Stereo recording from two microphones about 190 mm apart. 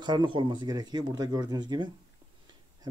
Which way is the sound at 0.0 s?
25° right (ahead or behind).